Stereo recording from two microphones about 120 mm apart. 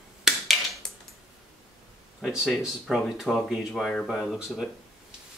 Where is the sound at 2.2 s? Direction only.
5° right (ahead or behind).